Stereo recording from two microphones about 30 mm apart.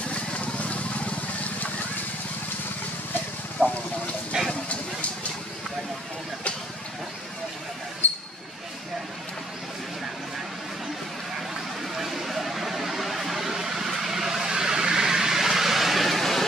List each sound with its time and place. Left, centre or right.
0.1 s vehicle: left
3.6 s speech: left
4.3 s vehicle: right
8.0 s basketball bounce: left
12.0 s a sound: centre
14.0 s vehicle: centre